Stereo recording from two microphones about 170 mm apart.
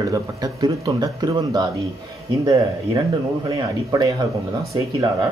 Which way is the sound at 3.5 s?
25° right (ahead or behind).